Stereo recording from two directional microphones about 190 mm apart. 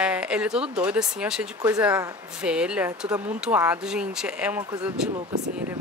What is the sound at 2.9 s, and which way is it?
Speech, 20° right (ahead or behind).